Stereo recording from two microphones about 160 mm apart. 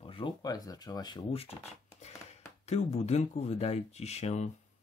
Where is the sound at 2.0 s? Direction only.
45° left (ahead or behind).